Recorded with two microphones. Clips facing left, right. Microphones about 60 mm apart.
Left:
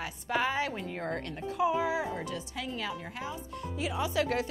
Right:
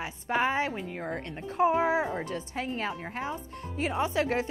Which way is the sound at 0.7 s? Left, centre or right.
Centre.